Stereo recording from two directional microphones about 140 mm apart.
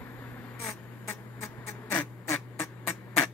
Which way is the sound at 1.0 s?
15° left (ahead or behind).